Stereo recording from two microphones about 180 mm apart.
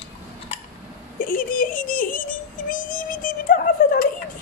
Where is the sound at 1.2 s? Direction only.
50° left (ahead or behind).